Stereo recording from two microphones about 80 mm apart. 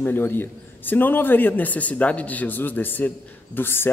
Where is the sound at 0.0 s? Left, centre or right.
Left.